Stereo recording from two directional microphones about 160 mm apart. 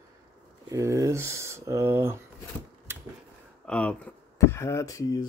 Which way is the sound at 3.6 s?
5° left (ahead or behind).